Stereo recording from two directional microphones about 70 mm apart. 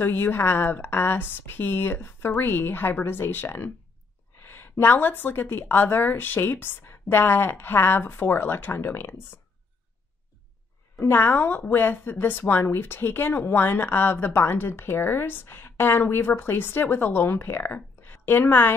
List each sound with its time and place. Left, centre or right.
0.0 s a woman's voice: left
11.1 s a woman's voice: left